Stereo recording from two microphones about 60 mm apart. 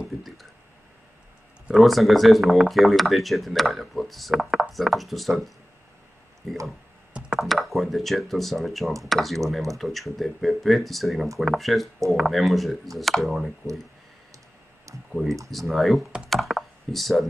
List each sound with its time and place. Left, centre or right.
1.7 s speech: centre
7.3 s speech: centre
14.9 s a sound: right
15.5 s speech: centre